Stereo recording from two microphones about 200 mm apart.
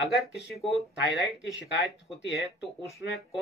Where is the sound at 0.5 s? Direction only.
Centre (ahead or behind).